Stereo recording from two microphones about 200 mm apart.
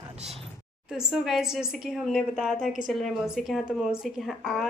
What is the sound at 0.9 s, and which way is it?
Speech, centre (ahead or behind).